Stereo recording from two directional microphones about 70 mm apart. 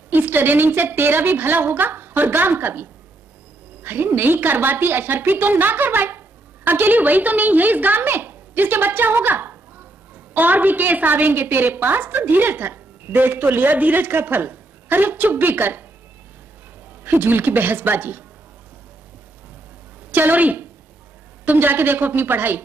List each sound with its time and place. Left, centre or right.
0.1 s a woman's voice: right
17.0 s a woman's voice: right
20.1 s a woman's voice: right